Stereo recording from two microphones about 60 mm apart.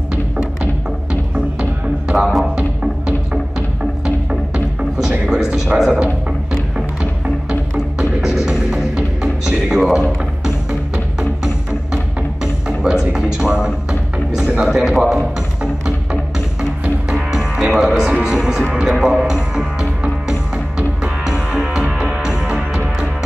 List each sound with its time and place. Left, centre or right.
0.1 s a sound: centre
1.3 s music: centre
2.1 s music: centre
2.5 s music: centre
9.7 s a sound: centre
10.4 s music: centre
14.6 s music: centre